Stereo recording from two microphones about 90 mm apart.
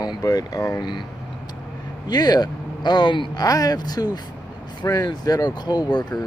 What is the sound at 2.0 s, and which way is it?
Speech, 50° left (ahead or behind).